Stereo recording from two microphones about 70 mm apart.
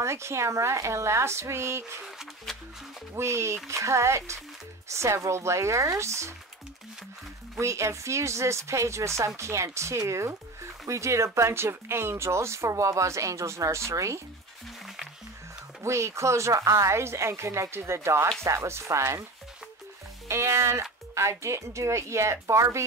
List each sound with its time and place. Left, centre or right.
0.0 s speech: right
3.2 s a woman's voice: right
7.5 s speech: right
15.8 s a woman's voice: right
20.2 s speech: right